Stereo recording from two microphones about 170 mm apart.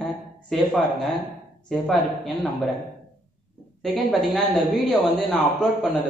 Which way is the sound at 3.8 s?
Centre (ahead or behind).